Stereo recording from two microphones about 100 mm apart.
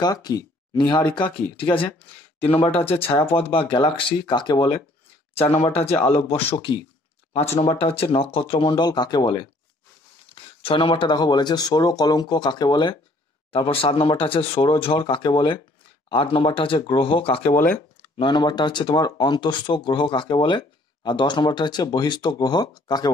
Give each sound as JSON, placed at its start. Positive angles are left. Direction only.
{"t": 0.0, "sound": "speech", "side_deg": 40}
{"t": 1.6, "sound": "speech", "side_deg": 65}
{"t": 2.4, "sound": "speech", "side_deg": 75}
{"t": 5.3, "sound": "speech", "side_deg": 90}
{"t": 5.9, "sound": "speech", "side_deg": 80}
{"t": 7.5, "sound": "speech", "side_deg": 70}
{"t": 8.6, "sound": "speech", "side_deg": 45}
{"t": 10.3, "sound": "speech", "side_deg": 65}
{"t": 13.5, "sound": "speech", "side_deg": 65}
{"t": 17.5, "sound": "speech", "side_deg": 20}
{"t": 18.1, "sound": "speech", "side_deg": 50}